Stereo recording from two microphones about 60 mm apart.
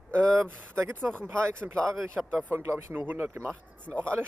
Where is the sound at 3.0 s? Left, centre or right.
Right.